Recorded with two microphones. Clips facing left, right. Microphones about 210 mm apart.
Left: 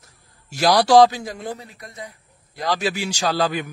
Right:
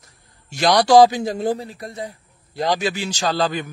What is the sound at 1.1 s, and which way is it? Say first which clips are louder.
A man's voice: right 8 dB; 30° right (ahead or behind).